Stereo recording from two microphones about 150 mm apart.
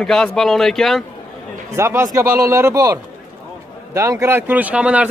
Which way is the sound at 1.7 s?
15° right (ahead or behind).